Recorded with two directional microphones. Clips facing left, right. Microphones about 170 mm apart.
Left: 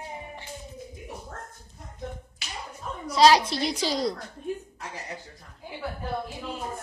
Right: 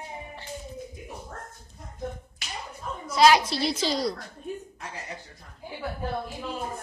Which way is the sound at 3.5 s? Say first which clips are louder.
Right 1 dB; 15° left (ahead or behind).